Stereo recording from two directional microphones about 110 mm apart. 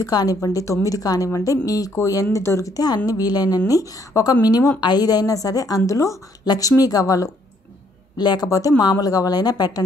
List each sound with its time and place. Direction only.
0.0 s speech: 35° left (ahead or behind)